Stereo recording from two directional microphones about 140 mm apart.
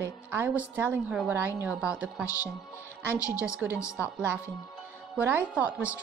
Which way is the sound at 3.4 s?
10° right (ahead or behind).